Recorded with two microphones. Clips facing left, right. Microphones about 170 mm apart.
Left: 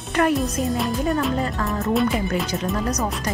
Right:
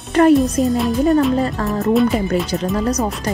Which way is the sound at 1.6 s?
35° right (ahead or behind).